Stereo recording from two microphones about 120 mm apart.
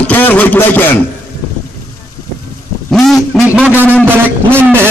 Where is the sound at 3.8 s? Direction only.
15° left (ahead or behind).